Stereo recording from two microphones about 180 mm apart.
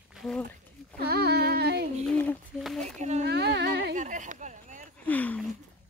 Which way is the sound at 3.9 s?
45° right (ahead or behind).